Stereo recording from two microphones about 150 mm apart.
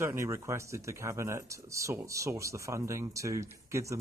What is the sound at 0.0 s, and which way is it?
Speech, 15° right (ahead or behind).